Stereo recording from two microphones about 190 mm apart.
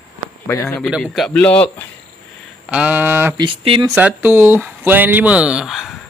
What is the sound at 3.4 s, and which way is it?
Speech, 25° right (ahead or behind).